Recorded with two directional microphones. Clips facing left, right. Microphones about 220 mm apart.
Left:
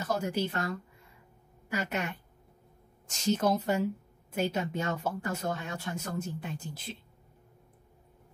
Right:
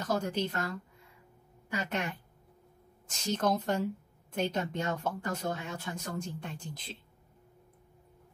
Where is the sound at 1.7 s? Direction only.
5° left (ahead or behind).